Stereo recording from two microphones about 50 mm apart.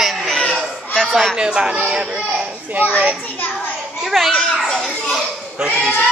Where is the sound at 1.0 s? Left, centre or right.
Centre.